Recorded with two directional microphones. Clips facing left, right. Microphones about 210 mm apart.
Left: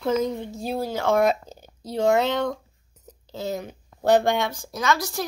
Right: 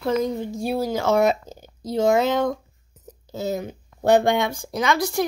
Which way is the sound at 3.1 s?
5° right (ahead or behind).